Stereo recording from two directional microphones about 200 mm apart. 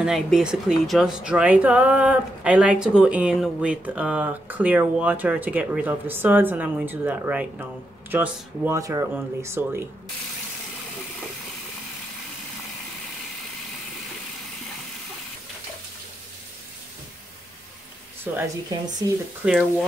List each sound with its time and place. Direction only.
0.0 s speech: centre (ahead or behind)
18.3 s speech: 10° right (ahead or behind)